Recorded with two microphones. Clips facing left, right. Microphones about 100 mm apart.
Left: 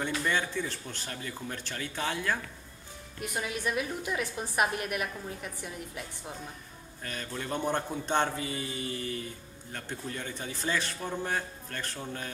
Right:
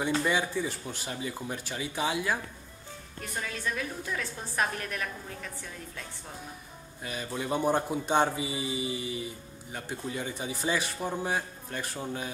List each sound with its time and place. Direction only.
0.2 s speech: 10° right (ahead or behind)
3.2 s a woman's voice: 15° left (ahead or behind)
7.0 s speech: 10° right (ahead or behind)